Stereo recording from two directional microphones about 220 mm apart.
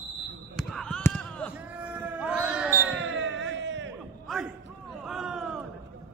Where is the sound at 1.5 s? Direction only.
5° right (ahead or behind).